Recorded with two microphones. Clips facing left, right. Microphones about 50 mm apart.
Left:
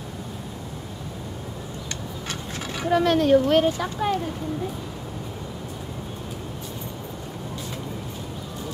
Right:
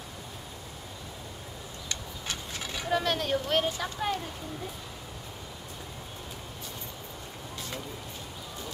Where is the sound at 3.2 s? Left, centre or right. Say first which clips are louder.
Left 11 dB; centre.